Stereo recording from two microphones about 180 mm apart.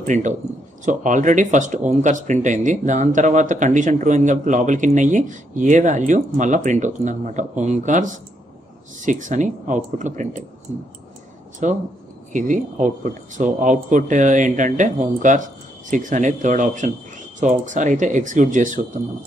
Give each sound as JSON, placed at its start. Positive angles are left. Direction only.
{"t": 0.0, "sound": "a man's voice", "side_deg": -45}
{"t": 11.6, "sound": "speech", "side_deg": -45}